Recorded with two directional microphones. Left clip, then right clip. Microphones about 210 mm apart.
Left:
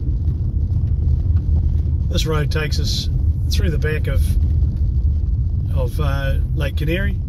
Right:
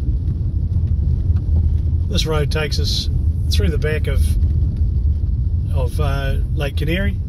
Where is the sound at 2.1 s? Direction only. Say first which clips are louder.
Right 2 dB; 20° right (ahead or behind).